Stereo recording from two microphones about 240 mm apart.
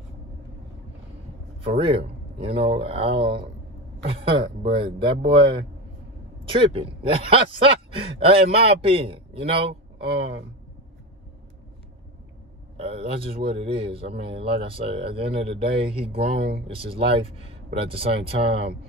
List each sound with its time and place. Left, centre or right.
1.6 s a man's voice: right
12.7 s a man's voice: right
18.4 s speech: right